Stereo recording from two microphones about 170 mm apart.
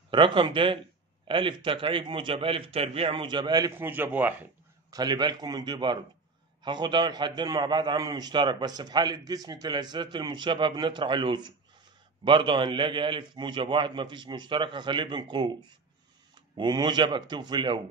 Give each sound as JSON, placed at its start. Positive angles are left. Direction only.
{"t": 0.1, "sound": "a man's voice", "side_deg": -30}
{"t": 4.9, "sound": "a man's voice", "side_deg": -25}
{"t": 16.5, "sound": "a man's voice", "side_deg": -25}